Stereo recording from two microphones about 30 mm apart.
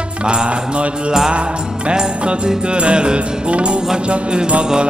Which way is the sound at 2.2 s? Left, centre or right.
Right.